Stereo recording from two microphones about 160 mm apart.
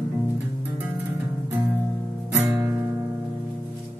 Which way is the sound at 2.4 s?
20° right (ahead or behind).